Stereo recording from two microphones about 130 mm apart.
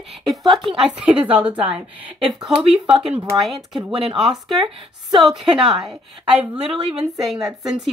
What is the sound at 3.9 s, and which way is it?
Speech, 45° right (ahead or behind).